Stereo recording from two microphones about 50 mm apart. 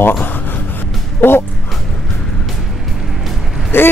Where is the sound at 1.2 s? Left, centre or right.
Left.